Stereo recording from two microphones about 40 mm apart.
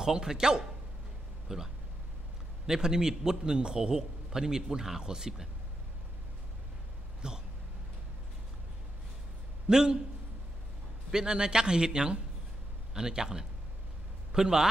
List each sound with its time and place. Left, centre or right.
0.0 s a man's voice: centre
7.2 s a sound: centre
9.7 s a man's voice: centre
11.1 s a man's voice: centre